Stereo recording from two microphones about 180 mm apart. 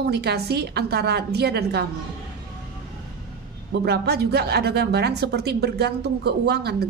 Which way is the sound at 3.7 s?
65° right (ahead or behind).